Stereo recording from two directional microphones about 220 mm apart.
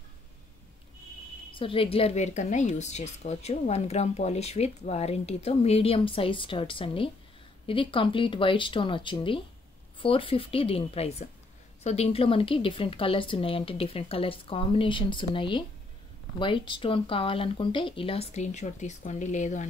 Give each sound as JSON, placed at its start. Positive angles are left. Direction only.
{"t": 1.5, "sound": "a woman's voice", "side_deg": 25}